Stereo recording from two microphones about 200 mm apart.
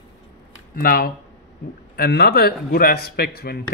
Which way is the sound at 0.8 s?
50° left (ahead or behind).